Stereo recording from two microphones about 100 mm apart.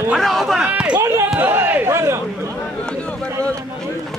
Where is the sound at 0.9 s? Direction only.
30° right (ahead or behind).